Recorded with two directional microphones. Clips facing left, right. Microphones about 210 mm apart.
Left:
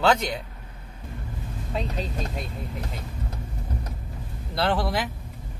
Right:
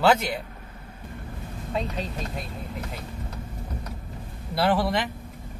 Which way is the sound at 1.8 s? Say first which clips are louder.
Even; centre (ahead or behind).